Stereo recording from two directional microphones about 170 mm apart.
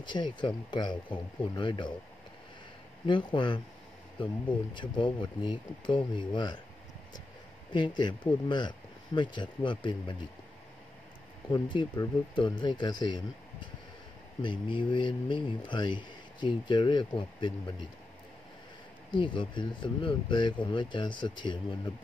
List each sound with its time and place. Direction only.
0.0 s speech: 25° left (ahead or behind)
3.1 s speech: 30° left (ahead or behind)
7.7 s speech: 25° left (ahead or behind)
11.7 s speech: 30° left (ahead or behind)
19.0 s speech: 30° left (ahead or behind)